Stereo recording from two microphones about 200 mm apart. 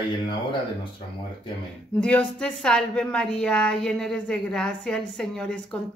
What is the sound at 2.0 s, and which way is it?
Speech, 5° left (ahead or behind).